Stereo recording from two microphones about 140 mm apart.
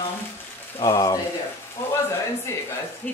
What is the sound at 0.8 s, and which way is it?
Speech, 25° left (ahead or behind).